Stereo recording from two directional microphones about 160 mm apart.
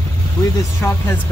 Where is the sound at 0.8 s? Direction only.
10° left (ahead or behind).